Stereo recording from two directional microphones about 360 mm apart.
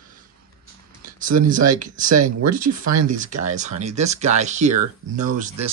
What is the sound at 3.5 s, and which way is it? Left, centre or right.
Speech, centre.